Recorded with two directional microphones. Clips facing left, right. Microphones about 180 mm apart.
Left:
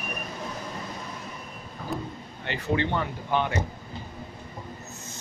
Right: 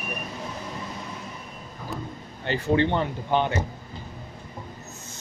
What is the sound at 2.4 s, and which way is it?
Speech, 35° right (ahead or behind).